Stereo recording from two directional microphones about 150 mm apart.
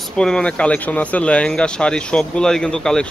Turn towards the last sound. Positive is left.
turn(degrees=5)  # may be behind; listen again after turning